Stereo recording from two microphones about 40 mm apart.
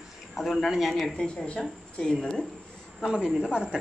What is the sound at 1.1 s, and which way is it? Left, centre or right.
Speech, left.